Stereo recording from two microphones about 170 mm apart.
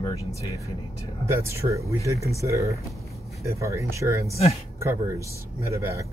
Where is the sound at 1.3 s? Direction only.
15° right (ahead or behind).